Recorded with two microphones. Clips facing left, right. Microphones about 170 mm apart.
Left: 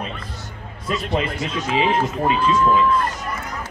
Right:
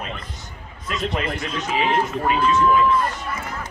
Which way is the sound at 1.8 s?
25° left (ahead or behind).